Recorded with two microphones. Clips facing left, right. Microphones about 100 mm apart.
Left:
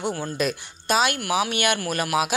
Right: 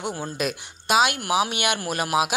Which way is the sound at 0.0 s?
15° right (ahead or behind).